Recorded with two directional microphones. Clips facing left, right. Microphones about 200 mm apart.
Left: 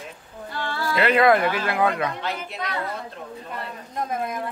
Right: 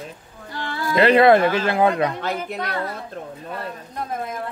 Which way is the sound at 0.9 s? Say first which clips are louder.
Right 5 dB; 30° right (ahead or behind).